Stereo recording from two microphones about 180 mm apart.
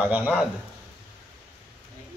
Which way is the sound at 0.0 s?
10° right (ahead or behind).